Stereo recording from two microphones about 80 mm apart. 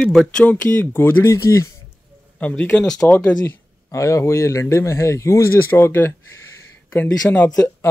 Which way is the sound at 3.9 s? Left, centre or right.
Left.